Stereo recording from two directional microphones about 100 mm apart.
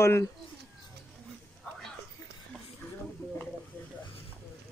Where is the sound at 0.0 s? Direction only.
25° left (ahead or behind).